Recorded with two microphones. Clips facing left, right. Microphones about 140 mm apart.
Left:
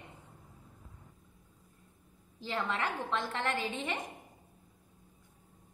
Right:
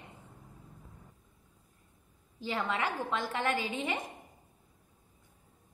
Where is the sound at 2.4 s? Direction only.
5° right (ahead or behind).